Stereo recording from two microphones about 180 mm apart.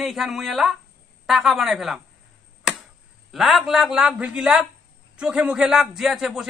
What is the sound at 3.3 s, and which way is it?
Speech, centre (ahead or behind).